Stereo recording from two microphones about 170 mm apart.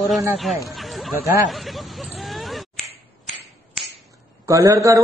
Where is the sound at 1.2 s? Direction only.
15° right (ahead or behind).